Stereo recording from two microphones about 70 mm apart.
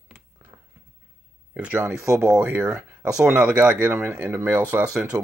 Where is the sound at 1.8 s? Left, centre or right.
Right.